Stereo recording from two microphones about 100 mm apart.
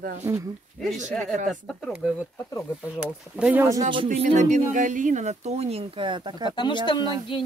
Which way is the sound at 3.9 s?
75° right (ahead or behind).